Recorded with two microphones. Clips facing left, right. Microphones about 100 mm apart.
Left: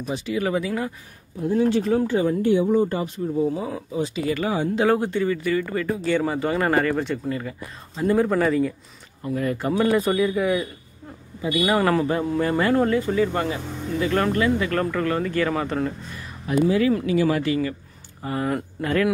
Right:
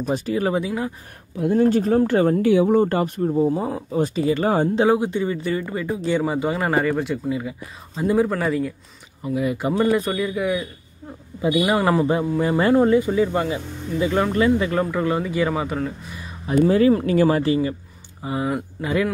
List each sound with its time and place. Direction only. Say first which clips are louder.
0.0 s speech: right 3 dB; 45° right (ahead or behind); by 0.9 s 20° right (ahead or behind)
1.5 s speech: right 2 dB; 45° right (ahead or behind)
2.0 s speech: right 3 dB; 60° right (ahead or behind); by 2.7 s 85° right
2.7 s speech: right 3 dB; 60° right (ahead or behind)
3.3 s speech: right 2 dB; 40° right (ahead or behind)
3.9 s speech: right 5 dB; 50° right (ahead or behind)
4.2 s speech: right 4 dB; 30° right (ahead or behind)
4.8 s a man's voice: right 1 dB; 15° right (ahead or behind)
9.8 s a man's voice: left 1 dB; centre (ahead or behind)
11.5 s speech: right 1 dB; 10° right (ahead or behind)
16.6 s speech: right 4 dB; 35° right (ahead or behind)
17.3 s speech: right 3 dB; 30° right (ahead or behind)
18.2 s speech: right 1 dB; 15° right (ahead or behind)